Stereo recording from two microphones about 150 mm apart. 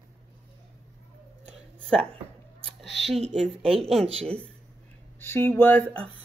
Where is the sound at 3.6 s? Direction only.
40° right (ahead or behind).